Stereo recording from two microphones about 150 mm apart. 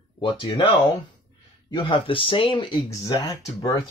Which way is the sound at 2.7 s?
20° left (ahead or behind).